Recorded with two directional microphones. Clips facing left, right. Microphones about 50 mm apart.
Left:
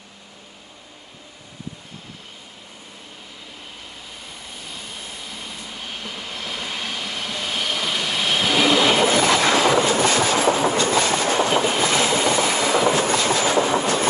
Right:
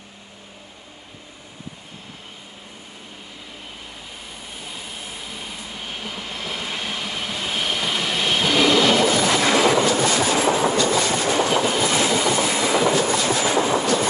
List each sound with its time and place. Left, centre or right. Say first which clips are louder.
6.4 s train: right 1 dB; centre
9.0 s train: left 1 dB; left